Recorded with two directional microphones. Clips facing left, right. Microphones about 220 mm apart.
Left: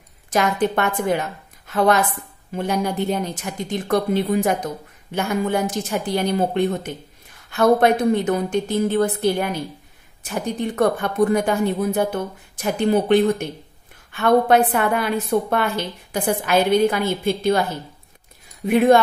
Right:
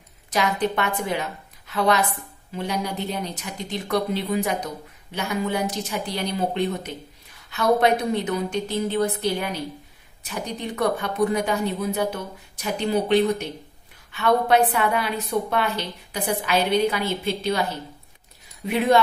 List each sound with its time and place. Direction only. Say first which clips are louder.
0.3 s a woman's voice: left 4 dB; 50° left (ahead or behind)
18.7 s a woman's voice: left 6 dB; 50° left (ahead or behind)